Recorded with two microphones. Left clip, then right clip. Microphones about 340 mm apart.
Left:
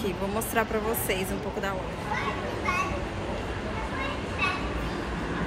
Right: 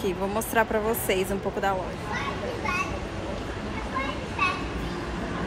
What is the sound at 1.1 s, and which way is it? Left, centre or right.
Speech, centre.